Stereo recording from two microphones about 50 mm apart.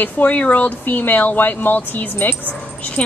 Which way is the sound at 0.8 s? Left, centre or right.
Left.